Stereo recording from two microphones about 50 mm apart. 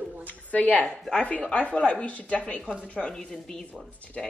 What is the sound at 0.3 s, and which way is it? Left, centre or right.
A woman's voice, left.